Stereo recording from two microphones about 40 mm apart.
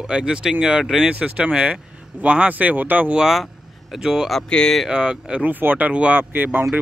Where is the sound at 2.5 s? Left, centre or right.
Right.